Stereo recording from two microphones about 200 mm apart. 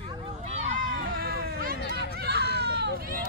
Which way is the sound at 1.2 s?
50° right (ahead or behind).